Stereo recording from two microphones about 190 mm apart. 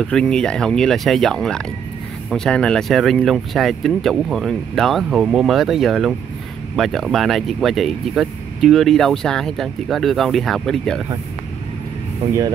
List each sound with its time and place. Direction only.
0.0 s speech: 5° left (ahead or behind)